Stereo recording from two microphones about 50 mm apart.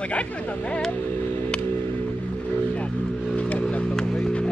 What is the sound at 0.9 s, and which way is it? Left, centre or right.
Music, left.